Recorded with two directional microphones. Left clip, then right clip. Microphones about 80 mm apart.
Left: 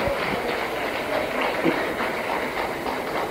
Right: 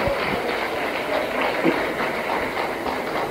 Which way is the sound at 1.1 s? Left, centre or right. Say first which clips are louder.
Right 2 dB; left.